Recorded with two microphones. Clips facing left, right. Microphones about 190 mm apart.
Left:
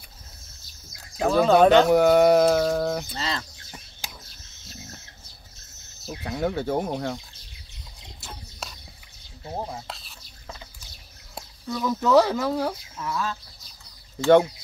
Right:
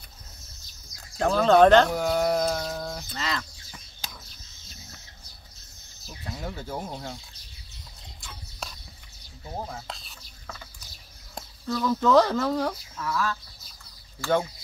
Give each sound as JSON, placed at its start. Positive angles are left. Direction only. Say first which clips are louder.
{"t": 1.1, "sound": "speech", "louder": "left 1 dB", "side_deg": 5}
{"t": 1.9, "sound": "speech", "louder": "left 8 dB", "side_deg": 65}
{"t": 3.2, "sound": "chicken", "louder": "left 1 dB", "side_deg": 30}
{"t": 6.0, "sound": "speech", "louder": "left 9 dB", "side_deg": 70}
{"t": 9.8, "sound": "a sound", "louder": "left 1 dB", "side_deg": 0}
{"t": 11.3, "sound": "speech", "louder": "right 1 dB", "side_deg": 10}
{"t": 13.0, "sound": "speech", "louder": "right 1 dB", "side_deg": 20}